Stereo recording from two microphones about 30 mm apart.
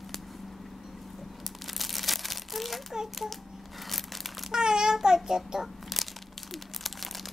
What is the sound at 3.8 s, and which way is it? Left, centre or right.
Crumpling, centre.